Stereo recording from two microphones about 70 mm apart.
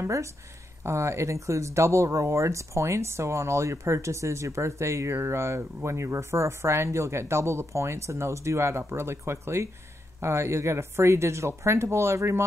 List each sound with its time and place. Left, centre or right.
0.0 s speech: right